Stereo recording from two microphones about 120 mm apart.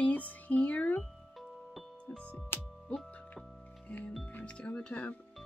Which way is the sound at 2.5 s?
20° left (ahead or behind).